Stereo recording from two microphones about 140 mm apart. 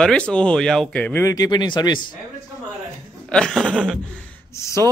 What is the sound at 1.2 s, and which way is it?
Speech, 25° left (ahead or behind).